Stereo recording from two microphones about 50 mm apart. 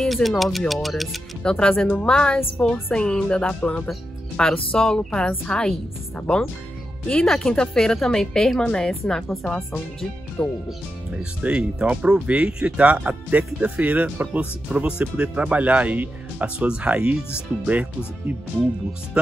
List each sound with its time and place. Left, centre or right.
0.0 s speech: centre
1.4 s a woman's voice: centre
7.2 s a woman's voice: centre
10.4 s speech: left
11.4 s speech: right